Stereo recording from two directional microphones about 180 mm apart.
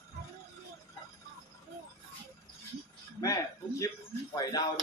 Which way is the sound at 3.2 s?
20° left (ahead or behind).